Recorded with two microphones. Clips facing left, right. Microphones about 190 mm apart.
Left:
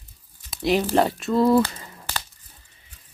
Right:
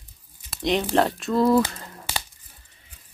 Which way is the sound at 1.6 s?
15° right (ahead or behind).